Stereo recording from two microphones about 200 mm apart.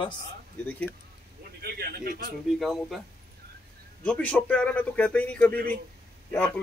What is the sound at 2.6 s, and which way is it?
Speech, centre (ahead or behind).